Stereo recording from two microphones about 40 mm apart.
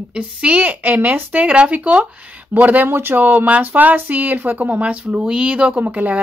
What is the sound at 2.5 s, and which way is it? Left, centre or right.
Speech, right.